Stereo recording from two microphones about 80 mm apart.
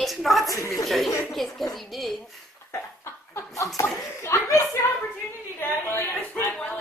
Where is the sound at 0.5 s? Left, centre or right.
Left.